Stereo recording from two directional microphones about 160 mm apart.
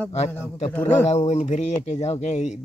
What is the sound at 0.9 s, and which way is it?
Speech, 45° left (ahead or behind).